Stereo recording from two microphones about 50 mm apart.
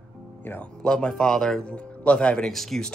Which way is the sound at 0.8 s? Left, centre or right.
Centre.